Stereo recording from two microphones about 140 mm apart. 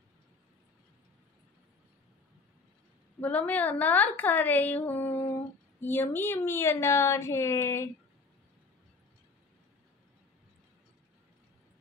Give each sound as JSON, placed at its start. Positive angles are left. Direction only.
{"t": 3.2, "sound": "a woman's voice", "side_deg": 10}